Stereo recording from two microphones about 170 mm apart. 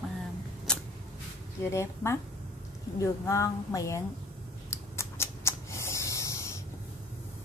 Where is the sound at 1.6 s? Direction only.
15° left (ahead or behind).